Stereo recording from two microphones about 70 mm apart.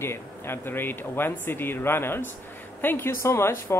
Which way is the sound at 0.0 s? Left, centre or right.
Left.